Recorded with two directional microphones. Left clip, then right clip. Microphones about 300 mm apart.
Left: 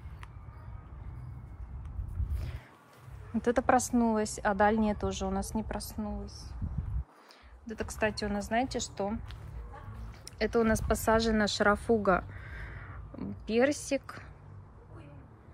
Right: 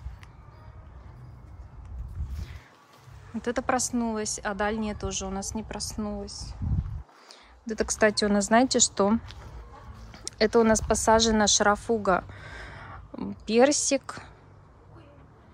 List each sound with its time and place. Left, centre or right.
3.4 s speech: centre
6.2 s speech: right
7.6 s speech: centre
10.2 s speech: centre